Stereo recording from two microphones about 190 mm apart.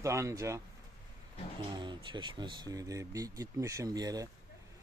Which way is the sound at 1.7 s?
25° right (ahead or behind).